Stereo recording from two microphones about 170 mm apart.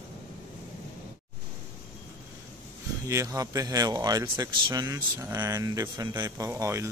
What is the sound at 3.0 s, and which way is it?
Speech, 20° right (ahead or behind).